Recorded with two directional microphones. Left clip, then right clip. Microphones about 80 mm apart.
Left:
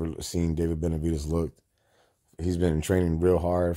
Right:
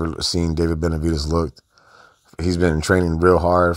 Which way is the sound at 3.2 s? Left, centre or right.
Centre.